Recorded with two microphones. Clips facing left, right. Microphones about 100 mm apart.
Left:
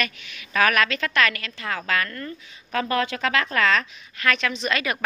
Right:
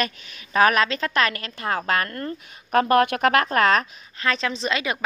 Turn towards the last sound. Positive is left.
turn(degrees=-20)  # may be behind; listen again after turning